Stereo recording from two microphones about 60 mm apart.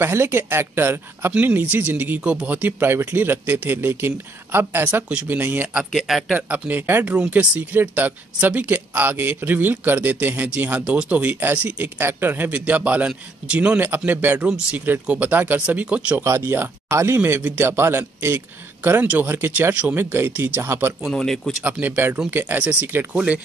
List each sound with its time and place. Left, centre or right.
0.0 s speech: right
1.4 s a man's voice: right
5.9 s speech: centre
6.3 s a man's voice: right
11.2 s a man's voice: right
13.7 s a man's voice: right
16.2 s speech: right
19.7 s a man's voice: right
20.0 s speech: right
21.1 s speech: centre
21.6 s a man's voice: right
22.3 s speech: right
22.6 s a man's voice: right